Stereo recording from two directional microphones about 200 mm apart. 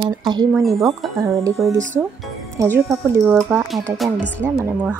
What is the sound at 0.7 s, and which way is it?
Speech, centre (ahead or behind).